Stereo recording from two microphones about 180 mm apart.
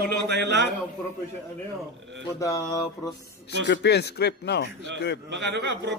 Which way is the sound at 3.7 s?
70° left (ahead or behind).